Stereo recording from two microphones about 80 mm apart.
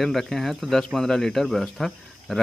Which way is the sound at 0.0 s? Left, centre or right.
Centre.